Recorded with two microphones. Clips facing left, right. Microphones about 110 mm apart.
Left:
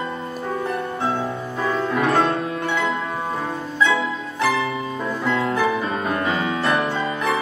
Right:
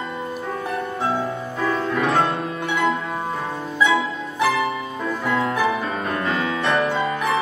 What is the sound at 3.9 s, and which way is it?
Music, 5° right (ahead or behind).